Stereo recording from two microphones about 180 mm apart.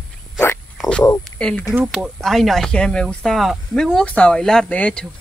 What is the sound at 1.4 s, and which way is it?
Speech, 5° left (ahead or behind).